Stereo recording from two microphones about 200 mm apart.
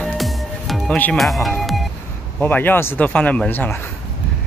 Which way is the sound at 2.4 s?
10° left (ahead or behind).